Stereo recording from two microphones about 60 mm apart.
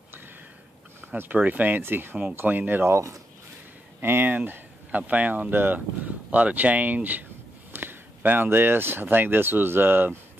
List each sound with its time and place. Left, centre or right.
1.1 s speech: right
2.9 s speech: right
4.0 s speech: right